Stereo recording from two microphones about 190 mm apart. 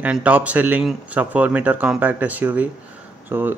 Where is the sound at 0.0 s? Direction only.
5° right (ahead or behind).